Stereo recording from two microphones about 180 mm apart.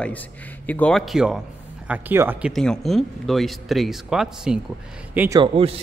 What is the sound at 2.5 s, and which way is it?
A man's voice, centre (ahead or behind).